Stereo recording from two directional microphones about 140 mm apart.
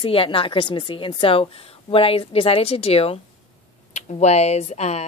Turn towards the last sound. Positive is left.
turn(degrees=50)  # may be behind; listen again after turning